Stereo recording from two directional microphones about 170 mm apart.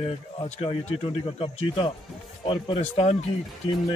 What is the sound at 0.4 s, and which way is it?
Speech, 35° left (ahead or behind).